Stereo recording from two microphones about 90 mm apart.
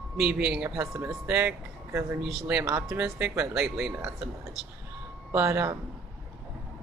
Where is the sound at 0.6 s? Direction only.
30° right (ahead or behind).